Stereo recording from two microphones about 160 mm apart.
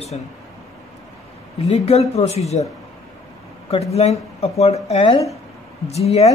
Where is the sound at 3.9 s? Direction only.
40° left (ahead or behind).